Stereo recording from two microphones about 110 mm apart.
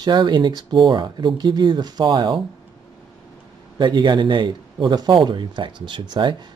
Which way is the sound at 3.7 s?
45° right (ahead or behind).